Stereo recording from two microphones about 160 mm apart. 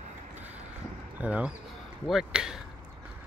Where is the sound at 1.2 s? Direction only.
10° right (ahead or behind).